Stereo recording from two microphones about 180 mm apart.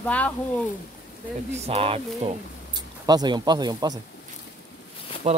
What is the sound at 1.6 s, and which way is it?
Speech, 30° right (ahead or behind).